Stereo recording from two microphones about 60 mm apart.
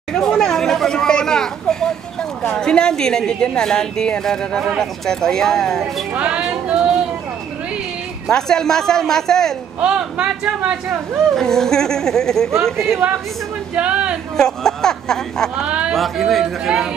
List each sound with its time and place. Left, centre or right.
0.1 s a sound: centre
4.6 s speech: centre
6.1 s a woman's voice: right
8.3 s speech: centre
9.8 s a woman's voice: right
11.3 s speech: centre
13.7 s a woman's voice: centre
14.3 s speech: centre
15.6 s a sound: centre
15.9 s speech: centre